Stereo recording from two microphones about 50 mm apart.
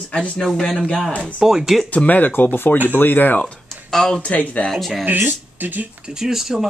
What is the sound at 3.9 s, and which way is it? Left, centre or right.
Speech, centre.